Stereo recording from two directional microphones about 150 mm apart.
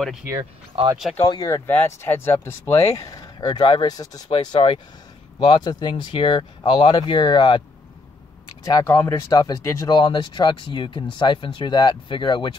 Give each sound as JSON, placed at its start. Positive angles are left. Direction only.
{"t": 0.7, "sound": "speech", "side_deg": -40}
{"t": 1.3, "sound": "speech", "side_deg": 25}
{"t": 8.6, "sound": "speech", "side_deg": 25}